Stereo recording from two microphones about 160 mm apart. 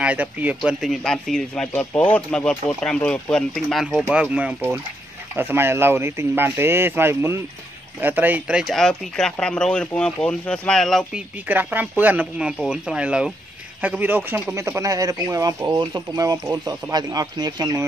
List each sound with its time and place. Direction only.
0.0 s speech: 10° right (ahead or behind)
11.4 s speech: 10° right (ahead or behind)